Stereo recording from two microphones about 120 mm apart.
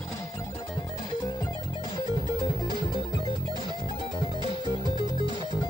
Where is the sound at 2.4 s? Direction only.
35° left (ahead or behind).